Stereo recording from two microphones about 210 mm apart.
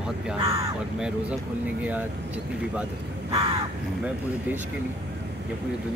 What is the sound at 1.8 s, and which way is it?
Speech, 5° right (ahead or behind).